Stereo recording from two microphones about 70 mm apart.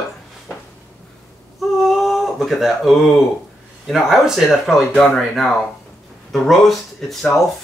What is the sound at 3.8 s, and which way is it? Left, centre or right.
Speech, centre.